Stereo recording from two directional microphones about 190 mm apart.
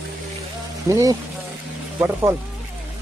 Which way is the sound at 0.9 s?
20° right (ahead or behind).